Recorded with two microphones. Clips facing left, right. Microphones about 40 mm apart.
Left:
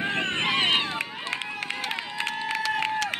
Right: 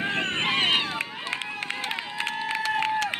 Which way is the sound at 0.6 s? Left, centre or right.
Centre.